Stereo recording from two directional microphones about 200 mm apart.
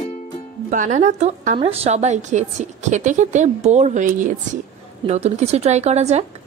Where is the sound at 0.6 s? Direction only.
40° right (ahead or behind).